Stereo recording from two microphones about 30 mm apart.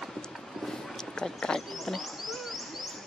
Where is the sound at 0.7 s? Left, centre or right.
Centre.